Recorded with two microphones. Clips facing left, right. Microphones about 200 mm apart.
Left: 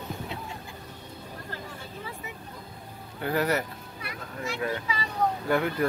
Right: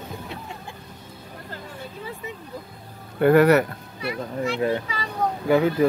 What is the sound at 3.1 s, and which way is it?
Speech, 65° right (ahead or behind).